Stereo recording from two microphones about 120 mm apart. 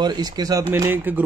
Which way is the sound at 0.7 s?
15° right (ahead or behind).